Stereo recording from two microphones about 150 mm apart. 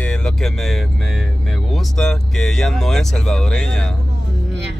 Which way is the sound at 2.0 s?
5° left (ahead or behind).